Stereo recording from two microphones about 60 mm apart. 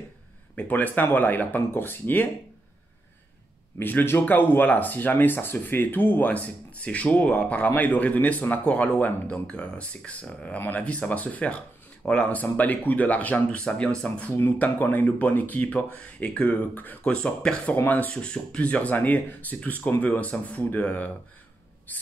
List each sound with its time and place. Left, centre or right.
0.6 s speech: left
3.8 s speech: left
17.0 s speech: centre
17.8 s speech: left
18.1 s speech: centre
21.9 s writing: left